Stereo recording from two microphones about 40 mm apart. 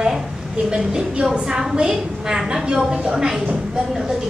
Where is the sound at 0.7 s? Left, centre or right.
Right.